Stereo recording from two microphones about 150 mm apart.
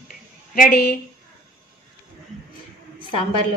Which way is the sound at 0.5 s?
80° left.